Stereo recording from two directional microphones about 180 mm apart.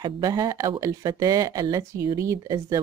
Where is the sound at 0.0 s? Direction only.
20° right (ahead or behind).